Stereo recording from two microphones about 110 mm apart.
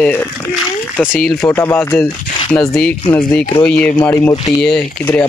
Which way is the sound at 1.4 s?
20° left (ahead or behind).